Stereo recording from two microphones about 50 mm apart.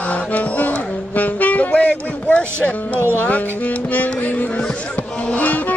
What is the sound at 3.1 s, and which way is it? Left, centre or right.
Speech, left.